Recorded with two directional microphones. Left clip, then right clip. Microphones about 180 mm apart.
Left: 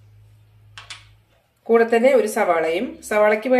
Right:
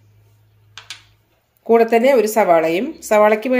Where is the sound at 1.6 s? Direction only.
45° right (ahead or behind).